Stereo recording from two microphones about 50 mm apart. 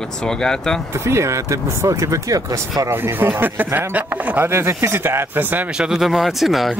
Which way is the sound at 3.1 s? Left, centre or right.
Right.